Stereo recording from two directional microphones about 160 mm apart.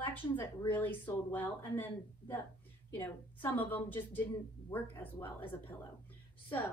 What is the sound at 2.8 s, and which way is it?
A woman's voice, 10° left (ahead or behind).